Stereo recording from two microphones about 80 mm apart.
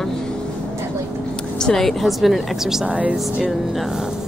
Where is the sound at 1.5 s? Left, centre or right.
Centre.